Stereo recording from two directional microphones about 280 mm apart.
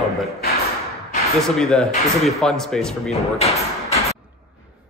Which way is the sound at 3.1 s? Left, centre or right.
Left.